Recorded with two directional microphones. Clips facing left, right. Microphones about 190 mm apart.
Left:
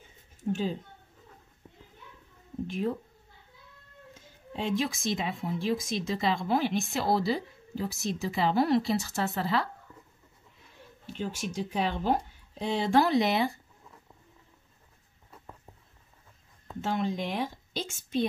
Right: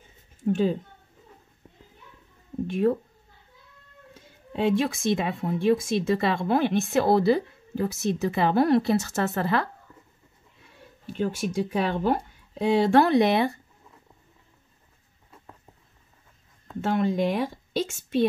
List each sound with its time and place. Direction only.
2.6 s speech: 60° right (ahead or behind)
4.1 s speech: 55° right (ahead or behind)
11.1 s speech: 55° right (ahead or behind)
16.8 s speech: 55° right (ahead or behind)